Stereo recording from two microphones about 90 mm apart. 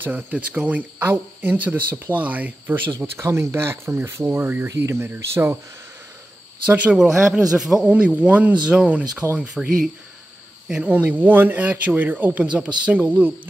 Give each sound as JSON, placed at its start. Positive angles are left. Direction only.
{"t": 0.0, "sound": "speech", "side_deg": -20}
{"t": 6.7, "sound": "a man's voice", "side_deg": -15}
{"t": 10.7, "sound": "speech", "side_deg": -15}